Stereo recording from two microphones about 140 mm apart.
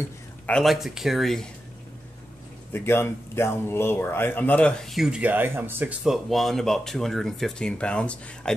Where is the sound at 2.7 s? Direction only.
15° left (ahead or behind).